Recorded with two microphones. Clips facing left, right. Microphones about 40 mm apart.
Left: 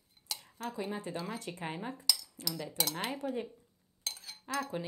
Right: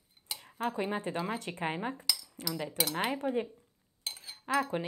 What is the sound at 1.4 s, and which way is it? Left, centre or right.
A woman's voice, right.